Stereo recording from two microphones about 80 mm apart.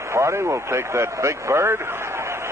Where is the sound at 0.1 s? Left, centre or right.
Right.